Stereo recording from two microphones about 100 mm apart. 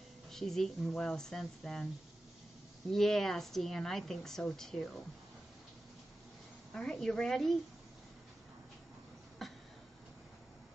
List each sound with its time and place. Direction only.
0.3 s a woman's voice: 5° left (ahead or behind)
2.9 s a woman's voice: 5° left (ahead or behind)
6.7 s a woman's voice: 5° left (ahead or behind)
9.4 s a sound: centre (ahead or behind)